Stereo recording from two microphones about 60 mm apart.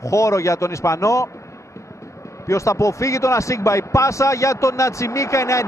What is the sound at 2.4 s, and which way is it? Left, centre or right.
A man's voice, left.